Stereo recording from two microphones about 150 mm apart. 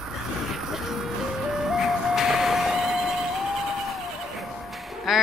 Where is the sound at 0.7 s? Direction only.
Centre (ahead or behind).